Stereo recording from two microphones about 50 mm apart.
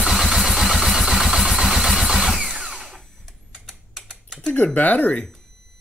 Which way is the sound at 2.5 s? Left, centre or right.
Centre.